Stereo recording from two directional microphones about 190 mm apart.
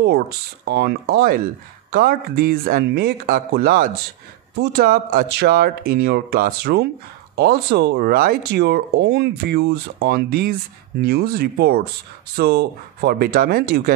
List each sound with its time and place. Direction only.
0.7 s speech: 60° right (ahead or behind)